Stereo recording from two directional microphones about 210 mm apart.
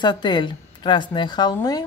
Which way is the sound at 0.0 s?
20° left (ahead or behind).